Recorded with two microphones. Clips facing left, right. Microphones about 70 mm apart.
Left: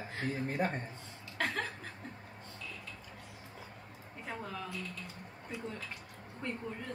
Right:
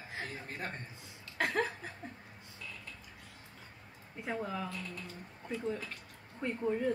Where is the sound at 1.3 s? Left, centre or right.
Centre.